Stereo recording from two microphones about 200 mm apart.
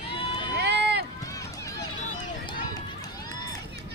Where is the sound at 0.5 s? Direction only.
55° right (ahead or behind).